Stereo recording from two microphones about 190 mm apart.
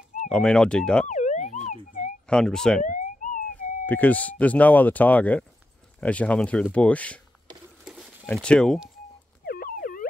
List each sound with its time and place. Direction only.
0.3 s speech: 5° left (ahead or behind)
1.0 s siren: 40° left (ahead or behind)
2.2 s speech: 5° left (ahead or behind)
2.8 s police car: 40° left (ahead or behind)
3.8 s speech: 10° left (ahead or behind)
7.8 s a sound: 5° right (ahead or behind)
8.3 s speech: 5° left (ahead or behind)
9.5 s fowl: 50° left (ahead or behind)